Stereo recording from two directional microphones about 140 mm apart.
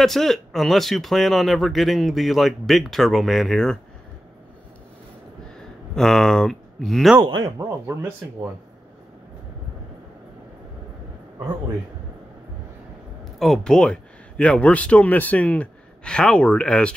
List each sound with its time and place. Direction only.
0.0 s speech: centre (ahead or behind)
5.9 s speech: centre (ahead or behind)
7.2 s speech: 25° right (ahead or behind)
13.4 s speech: 5° left (ahead or behind)